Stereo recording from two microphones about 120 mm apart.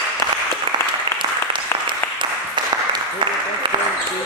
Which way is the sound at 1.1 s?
40° right (ahead or behind).